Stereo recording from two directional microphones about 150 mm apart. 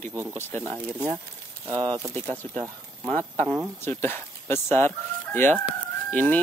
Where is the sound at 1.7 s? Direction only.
30° right (ahead or behind).